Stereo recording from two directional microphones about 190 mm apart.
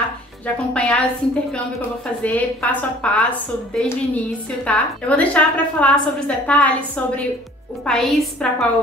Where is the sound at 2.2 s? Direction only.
10° left (ahead or behind).